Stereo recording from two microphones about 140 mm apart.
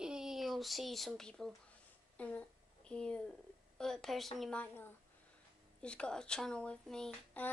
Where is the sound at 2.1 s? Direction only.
10° left (ahead or behind).